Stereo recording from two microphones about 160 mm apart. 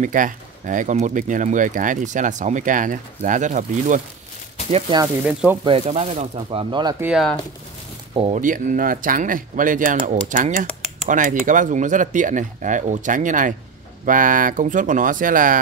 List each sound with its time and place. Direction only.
0.0 s speech: 55° right (ahead or behind)
4.6 s speech: 40° right (ahead or behind)
5.0 s speech: 10° right (ahead or behind)
5.6 s speech: 35° right (ahead or behind)
7.0 s speech: 5° right (ahead or behind)
8.1 s speech: 35° right (ahead or behind)
8.4 s speech: 55° right (ahead or behind)